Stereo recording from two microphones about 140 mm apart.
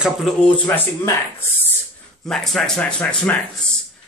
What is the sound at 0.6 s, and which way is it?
Speech, 15° left (ahead or behind).